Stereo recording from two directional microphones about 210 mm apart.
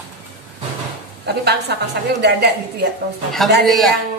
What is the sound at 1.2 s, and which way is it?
A woman's voice, 50° right (ahead or behind).